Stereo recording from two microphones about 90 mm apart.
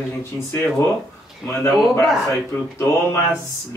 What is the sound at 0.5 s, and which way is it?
A man's voice, 25° left (ahead or behind).